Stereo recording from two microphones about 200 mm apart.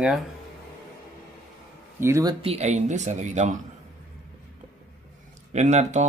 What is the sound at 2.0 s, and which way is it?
Speech, 15° right (ahead or behind).